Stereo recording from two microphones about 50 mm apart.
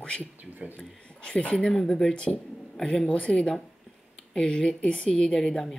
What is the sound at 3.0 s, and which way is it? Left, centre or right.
A woman's voice, centre.